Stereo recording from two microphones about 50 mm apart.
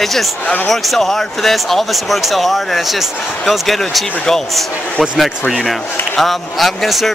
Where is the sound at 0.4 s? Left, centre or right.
Left.